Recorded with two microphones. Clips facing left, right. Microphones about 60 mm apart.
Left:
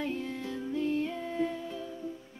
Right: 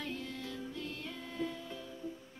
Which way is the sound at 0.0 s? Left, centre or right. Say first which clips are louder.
Left 7 dB; left.